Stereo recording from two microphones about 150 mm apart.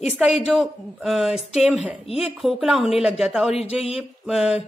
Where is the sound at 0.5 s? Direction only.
Centre (ahead or behind).